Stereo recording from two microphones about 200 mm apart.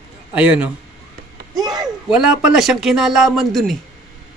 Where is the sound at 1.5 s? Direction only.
20° right (ahead or behind).